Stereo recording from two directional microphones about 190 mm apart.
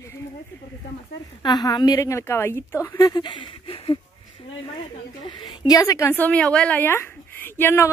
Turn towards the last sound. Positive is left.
turn(degrees=10)  # may be behind; listen again after turning